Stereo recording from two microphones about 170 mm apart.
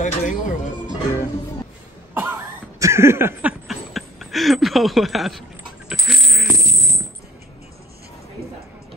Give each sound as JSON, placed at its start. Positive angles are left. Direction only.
{"t": 0.0, "sound": "music", "side_deg": 50}
{"t": 2.1, "sound": "cough", "side_deg": -15}
{"t": 3.6, "sound": "a sound", "side_deg": 0}
{"t": 5.9, "sound": "coin", "side_deg": 0}